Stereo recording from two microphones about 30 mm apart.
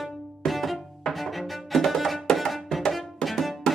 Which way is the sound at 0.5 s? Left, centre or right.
Centre.